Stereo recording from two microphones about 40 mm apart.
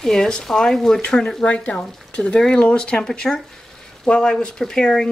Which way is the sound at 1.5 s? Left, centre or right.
Left.